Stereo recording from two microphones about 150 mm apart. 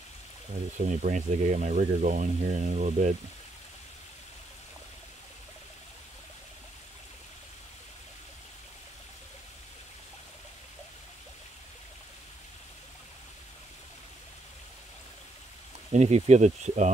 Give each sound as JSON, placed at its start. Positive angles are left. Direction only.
{"t": 0.7, "sound": "speech", "side_deg": -55}
{"t": 15.9, "sound": "speech", "side_deg": -50}